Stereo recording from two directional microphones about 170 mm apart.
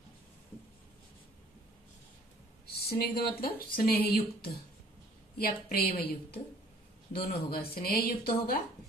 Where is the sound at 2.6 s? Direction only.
65° left (ahead or behind).